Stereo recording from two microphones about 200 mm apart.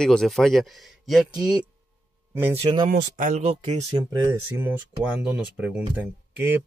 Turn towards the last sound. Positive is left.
turn(degrees=-10)  # may be behind; listen again after turning